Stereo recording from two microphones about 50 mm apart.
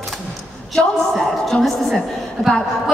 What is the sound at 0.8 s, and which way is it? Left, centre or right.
A woman's voice, centre.